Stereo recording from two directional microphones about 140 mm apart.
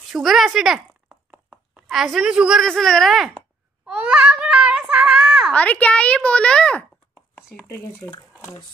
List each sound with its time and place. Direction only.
0.1 s speech: centre (ahead or behind)
3.8 s child singing: 10° right (ahead or behind)
5.5 s a child's voice: 10° left (ahead or behind)
7.5 s a child's voice: 20° left (ahead or behind)